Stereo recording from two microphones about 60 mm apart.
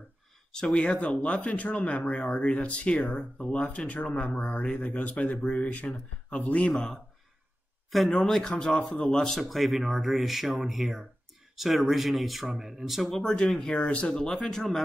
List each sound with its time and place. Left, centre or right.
0.7 s speech: left
6.7 s speech: centre
13.7 s speech: centre